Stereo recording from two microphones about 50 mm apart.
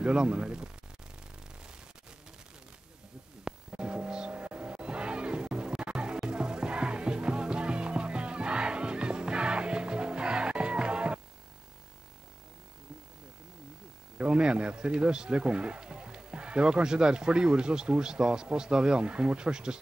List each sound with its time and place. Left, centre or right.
0.0 s speech: right
3.4 s music: centre
14.1 s speech: right